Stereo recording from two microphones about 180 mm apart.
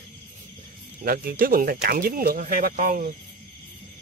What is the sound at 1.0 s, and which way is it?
Speech, 55° right (ahead or behind).